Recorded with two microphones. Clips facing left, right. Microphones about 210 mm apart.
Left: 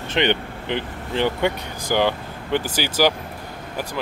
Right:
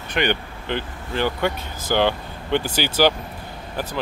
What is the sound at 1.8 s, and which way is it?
Speech, 10° left (ahead or behind).